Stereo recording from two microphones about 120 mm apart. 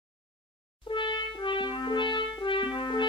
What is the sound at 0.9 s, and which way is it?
Music, 40° left (ahead or behind).